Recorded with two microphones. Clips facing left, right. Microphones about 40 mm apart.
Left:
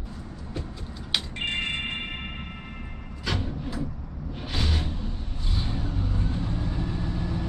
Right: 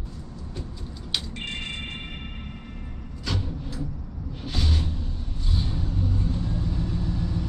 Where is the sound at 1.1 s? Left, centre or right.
Left.